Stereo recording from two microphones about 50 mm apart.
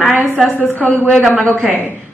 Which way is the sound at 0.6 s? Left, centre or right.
Left.